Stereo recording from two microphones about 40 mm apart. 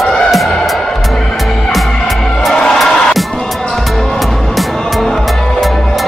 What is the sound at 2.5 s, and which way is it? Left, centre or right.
Music, left.